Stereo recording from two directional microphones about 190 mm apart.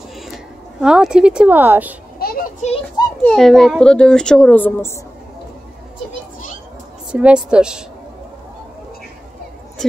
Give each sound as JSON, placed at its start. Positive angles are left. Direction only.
{"t": 0.7, "sound": "a child's voice", "side_deg": -5}
{"t": 2.1, "sound": "a child's voice", "side_deg": 50}
{"t": 3.3, "sound": "a child's voice", "side_deg": 0}
{"t": 7.1, "sound": "a child's voice", "side_deg": -5}